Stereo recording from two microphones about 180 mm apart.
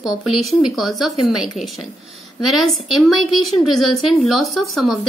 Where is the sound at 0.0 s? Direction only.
Centre (ahead or behind).